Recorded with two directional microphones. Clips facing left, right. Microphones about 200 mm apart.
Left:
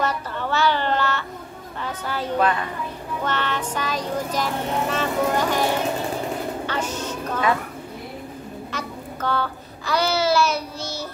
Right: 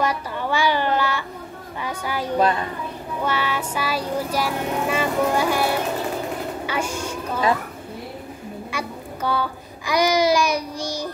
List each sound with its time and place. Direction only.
0.0 s a sound: 10° right (ahead or behind)
1.8 s a woman's voice: 10° right (ahead or behind)
8.7 s babbling: 10° right (ahead or behind)